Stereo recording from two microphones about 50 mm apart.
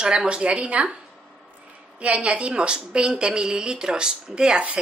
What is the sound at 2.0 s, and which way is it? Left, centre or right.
A woman's voice, right.